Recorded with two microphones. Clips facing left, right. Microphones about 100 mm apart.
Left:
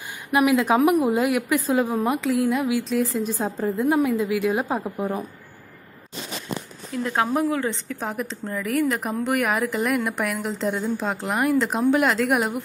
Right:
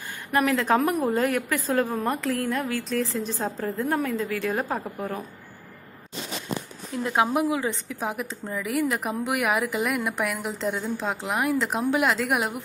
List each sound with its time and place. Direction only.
0.3 s a woman's voice: 10° left (ahead or behind)
4.9 s a woman's voice: 15° left (ahead or behind)
7.0 s a woman's voice: 15° right (ahead or behind)